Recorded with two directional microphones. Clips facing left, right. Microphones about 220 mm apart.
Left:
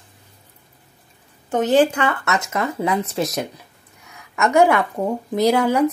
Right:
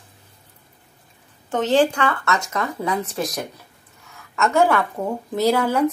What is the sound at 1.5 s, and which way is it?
Speech, 15° left (ahead or behind).